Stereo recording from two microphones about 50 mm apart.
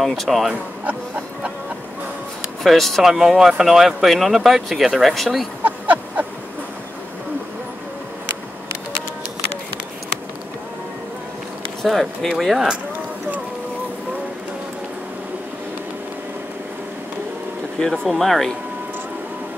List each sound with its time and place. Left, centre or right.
0.1 s speech: centre
2.6 s speech: centre
3.0 s speech: centre
5.6 s a sound: right
11.8 s speech: centre
17.7 s speech: centre